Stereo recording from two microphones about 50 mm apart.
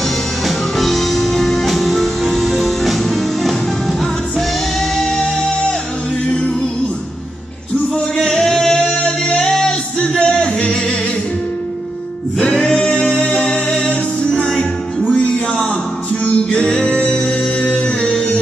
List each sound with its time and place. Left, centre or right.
0.5 s music: centre
7.9 s singing: centre
12.4 s singing: centre
13.5 s music: centre
17.8 s music: centre